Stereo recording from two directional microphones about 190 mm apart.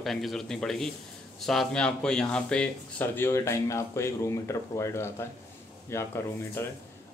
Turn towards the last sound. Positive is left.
turn(degrees=10)  # may be behind; listen again after turning